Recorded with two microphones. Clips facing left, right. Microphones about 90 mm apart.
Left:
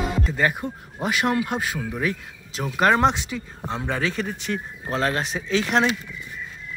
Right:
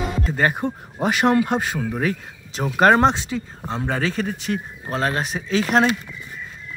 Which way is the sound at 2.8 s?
40° right (ahead or behind).